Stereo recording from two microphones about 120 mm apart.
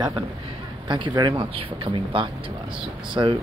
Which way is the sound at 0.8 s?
40° right (ahead or behind).